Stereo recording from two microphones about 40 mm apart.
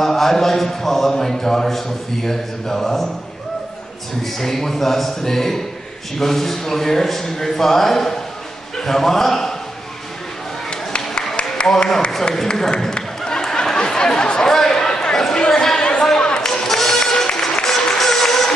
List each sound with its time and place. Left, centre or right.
0.0 s a man's voice: centre
4.2 s a man's voice: centre
11.6 s a man's voice: centre
12.4 s a sound: centre
13.7 s chatter: centre
14.5 s a sound: centre
15.4 s chatter: centre
16.2 s music: centre